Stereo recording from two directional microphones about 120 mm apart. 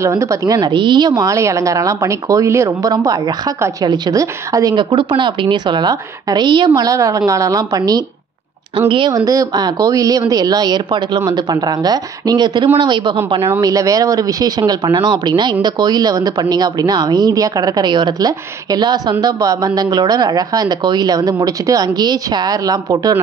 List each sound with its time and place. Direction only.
0.0 s a woman's voice: 25° right (ahead or behind)
0.6 s a woman's voice: 40° right (ahead or behind)
4.7 s a woman's voice: 45° right (ahead or behind)
8.7 s speech: 45° right (ahead or behind)
9.2 s a woman's voice: 30° right (ahead or behind)
13.6 s a woman's voice: 30° right (ahead or behind)